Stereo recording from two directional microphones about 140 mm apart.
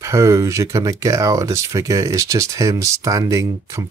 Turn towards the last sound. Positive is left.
turn(degrees=-20)  # may be behind; listen again after turning